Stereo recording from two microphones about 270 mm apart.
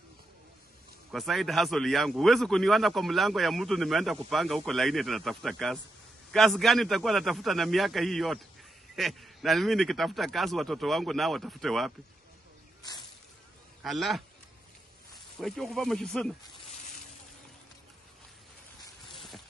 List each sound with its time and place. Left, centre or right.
1.1 s a man's voice: centre
13.8 s a man's voice: centre
15.3 s a man's voice: centre
19.0 s a sound: centre